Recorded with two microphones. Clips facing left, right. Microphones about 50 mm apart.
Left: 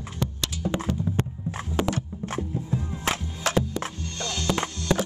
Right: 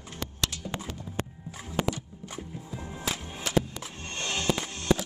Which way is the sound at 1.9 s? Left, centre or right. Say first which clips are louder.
Left 5 dB; left.